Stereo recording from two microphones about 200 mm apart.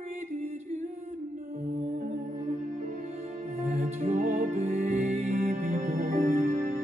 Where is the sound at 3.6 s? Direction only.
35° right (ahead or behind).